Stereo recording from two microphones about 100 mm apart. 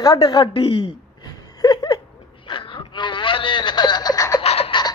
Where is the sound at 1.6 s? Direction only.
45° left (ahead or behind).